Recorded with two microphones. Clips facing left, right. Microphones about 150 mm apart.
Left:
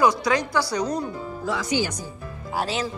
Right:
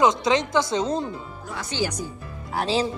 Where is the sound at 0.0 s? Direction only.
20° right (ahead or behind).